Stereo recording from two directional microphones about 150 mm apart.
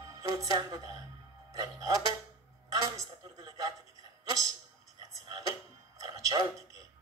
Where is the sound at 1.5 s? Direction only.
25° right (ahead or behind).